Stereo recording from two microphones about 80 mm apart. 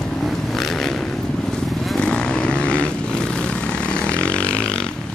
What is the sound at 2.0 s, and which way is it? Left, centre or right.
Vehicle, centre.